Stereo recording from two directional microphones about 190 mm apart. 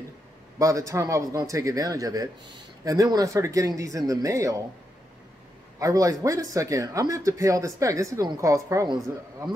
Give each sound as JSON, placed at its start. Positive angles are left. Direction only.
{"t": 0.6, "sound": "speech", "side_deg": -15}
{"t": 5.8, "sound": "speech", "side_deg": -15}